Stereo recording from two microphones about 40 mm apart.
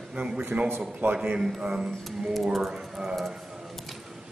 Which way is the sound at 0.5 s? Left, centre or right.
Right.